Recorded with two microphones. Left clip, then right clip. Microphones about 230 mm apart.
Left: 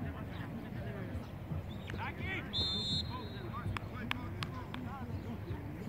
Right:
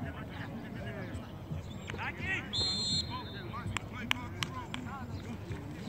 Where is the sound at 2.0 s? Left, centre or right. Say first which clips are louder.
Right 5 dB; centre.